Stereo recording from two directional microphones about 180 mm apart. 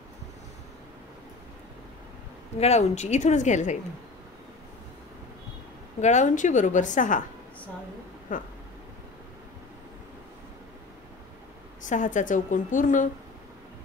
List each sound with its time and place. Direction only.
2.6 s a woman's voice: 35° left (ahead or behind)
5.9 s a woman's voice: 40° left (ahead or behind)
8.3 s a sound: 45° left (ahead or behind)
11.8 s a woman's voice: 45° left (ahead or behind)